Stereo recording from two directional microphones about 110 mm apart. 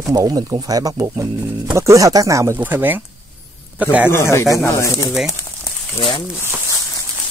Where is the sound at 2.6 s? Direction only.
15° right (ahead or behind).